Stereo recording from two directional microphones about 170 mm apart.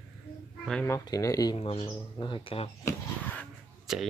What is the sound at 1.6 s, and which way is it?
Speech, 35° left (ahead or behind).